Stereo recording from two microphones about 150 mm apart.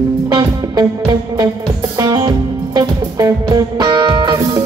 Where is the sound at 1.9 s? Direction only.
20° right (ahead or behind).